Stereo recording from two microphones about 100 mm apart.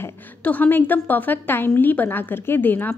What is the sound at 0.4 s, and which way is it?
Speech, 15° left (ahead or behind).